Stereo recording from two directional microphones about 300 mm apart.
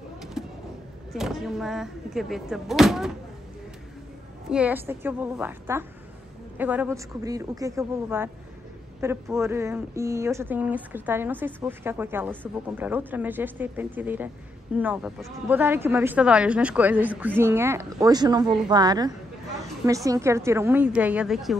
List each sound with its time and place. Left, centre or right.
0.2 s a sound: centre
1.1 s speech: centre
4.5 s a woman's voice: centre